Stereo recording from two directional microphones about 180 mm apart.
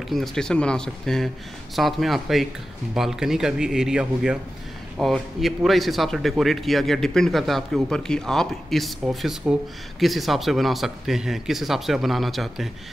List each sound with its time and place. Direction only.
0.1 s speech: centre (ahead or behind)